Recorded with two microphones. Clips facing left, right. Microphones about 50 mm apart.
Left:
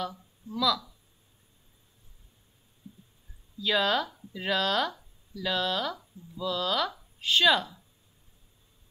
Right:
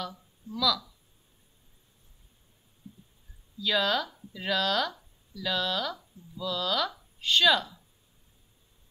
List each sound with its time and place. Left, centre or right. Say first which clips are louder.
0.0 s speech: left 3 dB; left
0.6 s speech: left 1 dB; centre
3.6 s speech: left 1 dB; centre
7.2 s speech: even; centre